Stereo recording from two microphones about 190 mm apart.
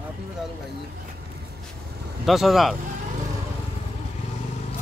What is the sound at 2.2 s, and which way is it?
Speech, centre (ahead or behind).